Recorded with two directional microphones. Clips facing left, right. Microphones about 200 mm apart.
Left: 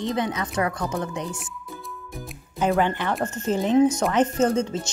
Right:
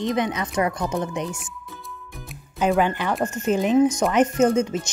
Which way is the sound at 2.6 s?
15° right (ahead or behind).